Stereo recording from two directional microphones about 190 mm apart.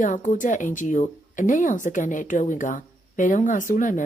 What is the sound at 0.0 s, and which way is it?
Speech, 40° left (ahead or behind).